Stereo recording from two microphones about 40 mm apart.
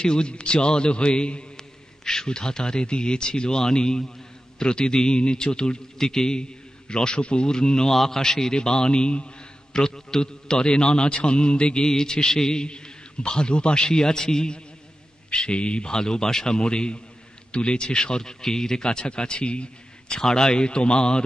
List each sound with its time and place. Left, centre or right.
0.0 s a man's voice: left